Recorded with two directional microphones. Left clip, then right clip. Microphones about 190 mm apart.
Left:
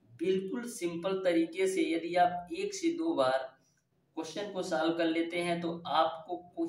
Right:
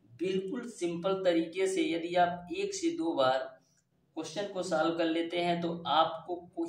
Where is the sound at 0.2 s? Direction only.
10° left (ahead or behind).